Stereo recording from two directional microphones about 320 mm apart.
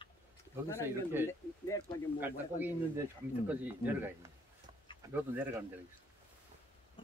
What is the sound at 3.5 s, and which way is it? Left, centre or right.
Speech, centre.